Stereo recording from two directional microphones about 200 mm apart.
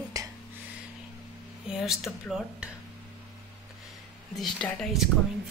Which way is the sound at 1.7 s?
Centre (ahead or behind).